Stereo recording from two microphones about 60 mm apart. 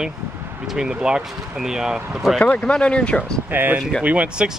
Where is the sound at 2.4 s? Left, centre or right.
Centre.